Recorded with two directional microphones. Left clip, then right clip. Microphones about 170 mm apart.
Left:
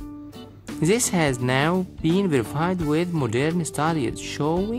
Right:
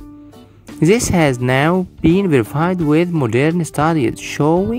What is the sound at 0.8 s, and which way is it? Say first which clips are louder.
Speech: right 8 dB; 30° right (ahead or behind).